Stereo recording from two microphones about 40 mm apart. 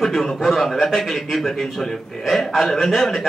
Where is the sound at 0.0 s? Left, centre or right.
Centre.